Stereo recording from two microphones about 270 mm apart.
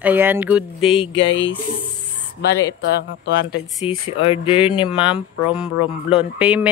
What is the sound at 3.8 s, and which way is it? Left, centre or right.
Speech, centre.